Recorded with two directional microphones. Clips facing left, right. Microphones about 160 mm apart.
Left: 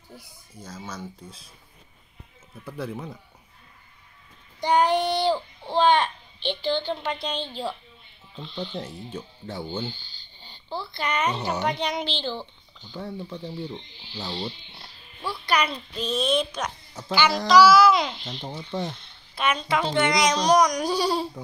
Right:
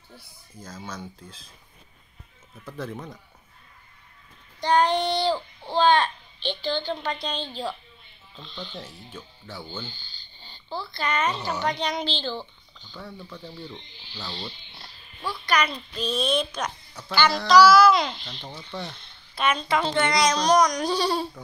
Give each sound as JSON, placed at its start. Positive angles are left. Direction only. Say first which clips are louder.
{"t": 0.7, "sound": "a child's voice", "louder": "left 1 dB", "side_deg": 10}
{"t": 2.6, "sound": "a child's voice", "louder": "left 1 dB", "side_deg": 5}
{"t": 4.6, "sound": "a child's voice", "louder": "even", "side_deg": 10}
{"t": 8.5, "sound": "a woman's voice", "louder": "left 6 dB", "side_deg": 25}
{"t": 12.9, "sound": "a child's voice", "louder": "left 6 dB", "side_deg": 25}
{"t": 15.9, "sound": "speech", "louder": "even", "side_deg": 25}
{"t": 16.2, "sound": "a child's voice", "louder": "left 2 dB", "side_deg": 5}
{"t": 18.7, "sound": "speech", "louder": "left 5 dB", "side_deg": 20}
{"t": 19.3, "sound": "a child's voice", "louder": "right 1 dB", "side_deg": 5}